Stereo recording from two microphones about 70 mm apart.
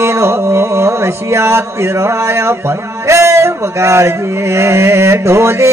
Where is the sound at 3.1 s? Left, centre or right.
Right.